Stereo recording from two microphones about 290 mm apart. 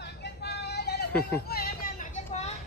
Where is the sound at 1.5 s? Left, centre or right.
Left.